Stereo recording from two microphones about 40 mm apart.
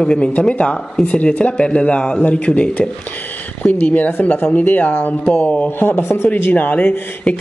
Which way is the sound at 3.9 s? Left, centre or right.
Left.